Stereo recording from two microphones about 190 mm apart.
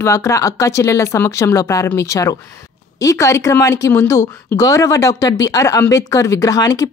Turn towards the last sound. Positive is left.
turn(degrees=20)  # may be behind; listen again after turning